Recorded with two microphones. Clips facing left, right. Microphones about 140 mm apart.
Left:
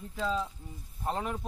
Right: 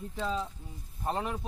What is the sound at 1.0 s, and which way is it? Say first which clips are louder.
Speech: even; centre (ahead or behind).